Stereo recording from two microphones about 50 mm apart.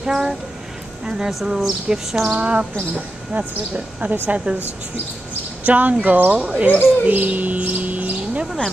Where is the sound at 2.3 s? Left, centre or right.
Right.